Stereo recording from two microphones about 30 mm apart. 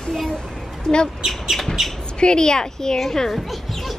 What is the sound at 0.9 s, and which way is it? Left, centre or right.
Speech, centre.